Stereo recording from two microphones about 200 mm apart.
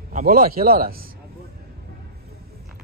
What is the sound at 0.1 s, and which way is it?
Speech, 45° right (ahead or behind).